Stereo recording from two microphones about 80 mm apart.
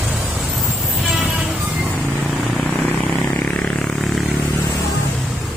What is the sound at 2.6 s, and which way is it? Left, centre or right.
Vehicle, centre.